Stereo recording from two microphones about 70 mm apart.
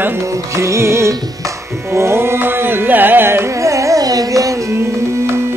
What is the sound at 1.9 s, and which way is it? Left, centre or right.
Carnatic music, right.